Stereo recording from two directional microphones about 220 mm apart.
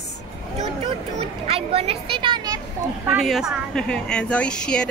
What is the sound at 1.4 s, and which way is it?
Speech, 25° right (ahead or behind).